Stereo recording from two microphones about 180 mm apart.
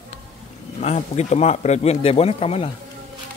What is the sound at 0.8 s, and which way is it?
Speech, 40° left (ahead or behind).